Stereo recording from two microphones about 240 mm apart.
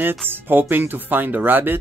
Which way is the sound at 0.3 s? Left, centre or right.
Centre.